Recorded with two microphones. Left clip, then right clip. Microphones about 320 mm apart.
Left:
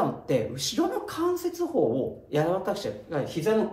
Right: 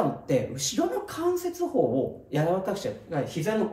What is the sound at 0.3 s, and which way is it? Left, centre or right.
Speech, centre.